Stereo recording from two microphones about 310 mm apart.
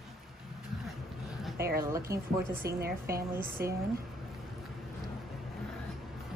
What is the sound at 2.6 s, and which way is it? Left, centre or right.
A woman's voice, right.